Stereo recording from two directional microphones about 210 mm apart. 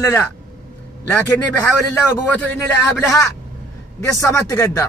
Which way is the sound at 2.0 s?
10° left (ahead or behind).